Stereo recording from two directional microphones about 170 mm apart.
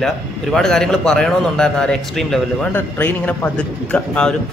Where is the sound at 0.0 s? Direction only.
Centre (ahead or behind).